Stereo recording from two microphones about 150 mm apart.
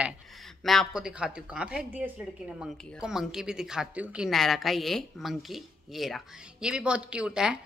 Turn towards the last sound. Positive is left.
turn(degrees=-5)  # may be behind; listen again after turning